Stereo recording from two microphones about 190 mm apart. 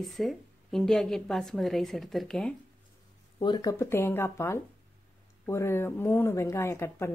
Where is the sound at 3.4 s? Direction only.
20° left (ahead or behind).